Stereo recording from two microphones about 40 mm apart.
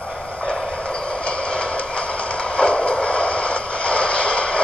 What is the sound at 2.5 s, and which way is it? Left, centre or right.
Vehicle, left.